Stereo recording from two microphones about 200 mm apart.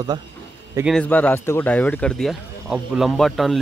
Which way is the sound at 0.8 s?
5° left (ahead or behind).